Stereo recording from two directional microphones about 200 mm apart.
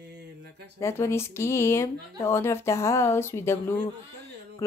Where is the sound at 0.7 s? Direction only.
15° left (ahead or behind).